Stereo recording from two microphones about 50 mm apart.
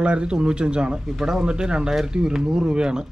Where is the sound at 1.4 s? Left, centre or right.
Centre.